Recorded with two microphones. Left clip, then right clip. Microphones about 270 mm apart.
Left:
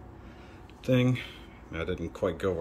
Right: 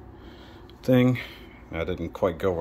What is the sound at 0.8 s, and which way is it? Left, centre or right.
Speech, centre.